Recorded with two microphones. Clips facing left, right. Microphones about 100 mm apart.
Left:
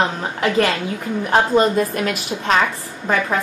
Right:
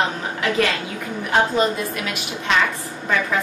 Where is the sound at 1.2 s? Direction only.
40° left (ahead or behind).